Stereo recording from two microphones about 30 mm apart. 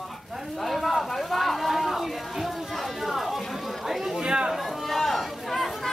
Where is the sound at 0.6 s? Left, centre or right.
Centre.